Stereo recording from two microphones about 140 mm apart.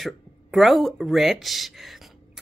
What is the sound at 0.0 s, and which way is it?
A woman's voice, centre (ahead or behind).